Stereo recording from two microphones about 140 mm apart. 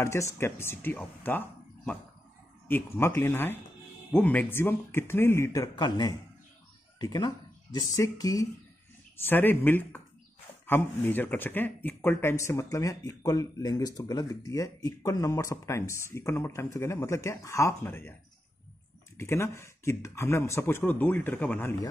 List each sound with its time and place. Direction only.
0.0 s speech: 20° left (ahead or behind)
2.7 s speech: 15° left (ahead or behind)
5.8 s speech: 30° left (ahead or behind)
9.1 s speech: 15° left (ahead or behind)
19.1 s speech: 20° left (ahead or behind)